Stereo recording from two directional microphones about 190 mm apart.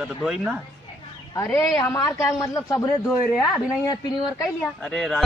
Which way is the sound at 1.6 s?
15° left (ahead or behind).